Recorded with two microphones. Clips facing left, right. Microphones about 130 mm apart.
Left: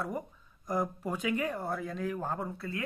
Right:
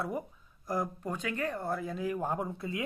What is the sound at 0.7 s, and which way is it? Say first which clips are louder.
Speech: left 1 dB; 5° left (ahead or behind).